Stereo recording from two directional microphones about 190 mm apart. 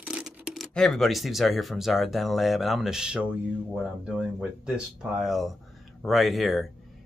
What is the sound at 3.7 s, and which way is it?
Speech, centre (ahead or behind).